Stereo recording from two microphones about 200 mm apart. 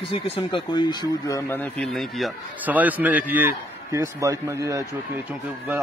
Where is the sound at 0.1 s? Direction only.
25° left (ahead or behind).